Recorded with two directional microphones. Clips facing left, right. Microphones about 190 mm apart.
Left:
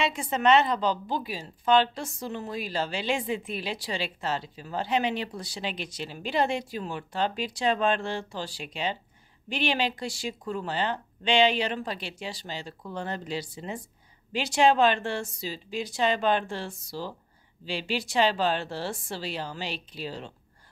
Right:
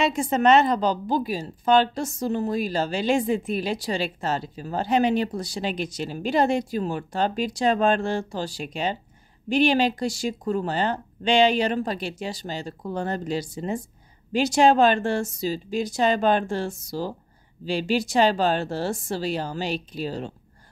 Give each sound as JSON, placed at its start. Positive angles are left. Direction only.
{"t": 0.0, "sound": "a woman's voice", "side_deg": -45}